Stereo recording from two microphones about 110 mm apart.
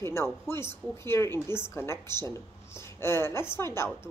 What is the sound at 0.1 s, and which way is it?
A woman's voice, 20° left (ahead or behind).